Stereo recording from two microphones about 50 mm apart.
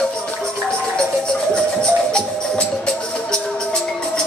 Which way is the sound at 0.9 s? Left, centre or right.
Centre.